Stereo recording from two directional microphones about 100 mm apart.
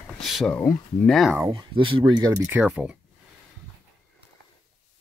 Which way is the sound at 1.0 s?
Centre (ahead or behind).